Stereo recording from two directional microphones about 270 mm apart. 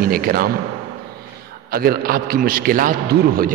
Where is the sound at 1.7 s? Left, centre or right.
Right.